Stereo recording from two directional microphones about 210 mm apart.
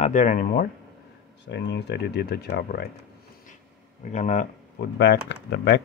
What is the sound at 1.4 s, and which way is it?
Speech, 55° left (ahead or behind).